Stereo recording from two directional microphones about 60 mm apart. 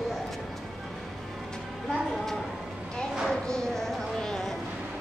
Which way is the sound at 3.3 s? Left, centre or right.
Centre.